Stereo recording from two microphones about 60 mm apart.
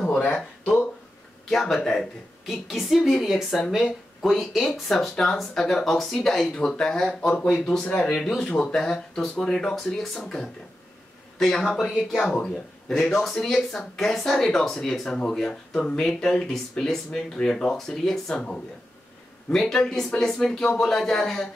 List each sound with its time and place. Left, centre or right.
1.5 s speech: centre
8.4 s speech: centre
12.4 s a man's voice: centre
12.9 s speech: centre